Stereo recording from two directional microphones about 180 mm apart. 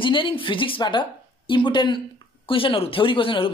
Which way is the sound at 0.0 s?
30° left (ahead or behind).